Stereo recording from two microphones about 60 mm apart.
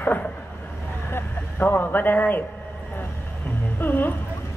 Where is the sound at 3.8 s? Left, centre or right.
Left.